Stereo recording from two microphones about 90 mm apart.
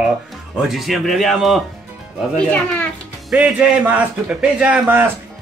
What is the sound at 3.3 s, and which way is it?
Speech, 10° right (ahead or behind).